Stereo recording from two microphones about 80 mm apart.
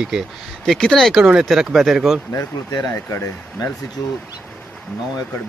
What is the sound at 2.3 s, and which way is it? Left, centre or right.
Speech, left.